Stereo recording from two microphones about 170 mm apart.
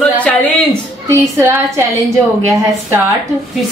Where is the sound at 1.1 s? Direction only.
15° right (ahead or behind).